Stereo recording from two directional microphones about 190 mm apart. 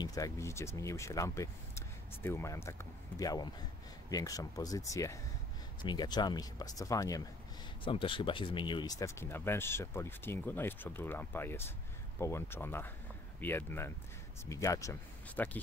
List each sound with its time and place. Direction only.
0.0 s speech: 20° left (ahead or behind)